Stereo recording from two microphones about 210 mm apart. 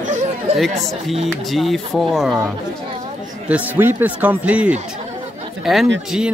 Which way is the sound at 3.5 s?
10° right (ahead or behind).